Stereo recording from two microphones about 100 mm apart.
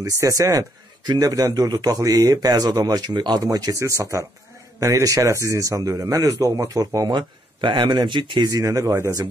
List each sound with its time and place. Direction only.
0.0 s a man's voice: 35° right (ahead or behind)
7.2 s speech: 50° right (ahead or behind)
8.5 s a man's voice: 35° right (ahead or behind)